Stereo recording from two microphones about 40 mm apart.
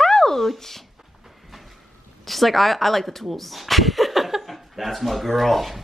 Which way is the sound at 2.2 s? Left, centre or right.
Centre.